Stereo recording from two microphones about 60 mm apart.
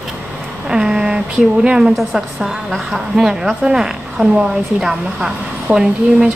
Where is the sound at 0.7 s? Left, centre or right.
Centre.